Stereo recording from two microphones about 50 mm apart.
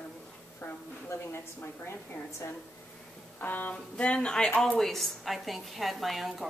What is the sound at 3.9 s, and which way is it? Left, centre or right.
Speech, left.